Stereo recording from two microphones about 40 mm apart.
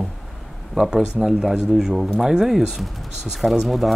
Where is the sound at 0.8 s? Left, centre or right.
Right.